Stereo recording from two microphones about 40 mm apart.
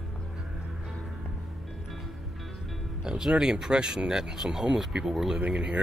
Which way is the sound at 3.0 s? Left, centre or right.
Centre.